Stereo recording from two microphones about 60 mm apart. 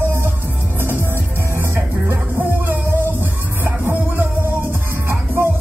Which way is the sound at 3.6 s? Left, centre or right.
Right.